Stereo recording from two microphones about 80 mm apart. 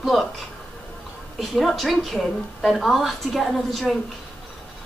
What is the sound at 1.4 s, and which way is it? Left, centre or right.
A woman's voice, centre.